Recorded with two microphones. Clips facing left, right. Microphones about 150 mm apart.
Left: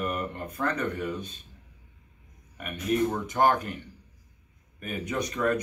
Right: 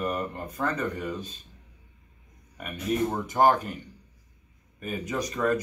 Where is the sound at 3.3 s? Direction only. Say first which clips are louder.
Right 4 dB; 5° right (ahead or behind).